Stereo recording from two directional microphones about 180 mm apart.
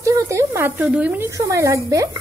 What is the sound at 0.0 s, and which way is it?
Speech, 15° right (ahead or behind).